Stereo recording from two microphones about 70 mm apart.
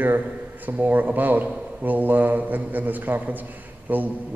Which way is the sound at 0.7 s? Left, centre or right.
Right.